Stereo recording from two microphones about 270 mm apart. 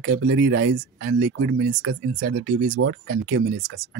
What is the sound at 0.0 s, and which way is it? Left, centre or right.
Speech, right.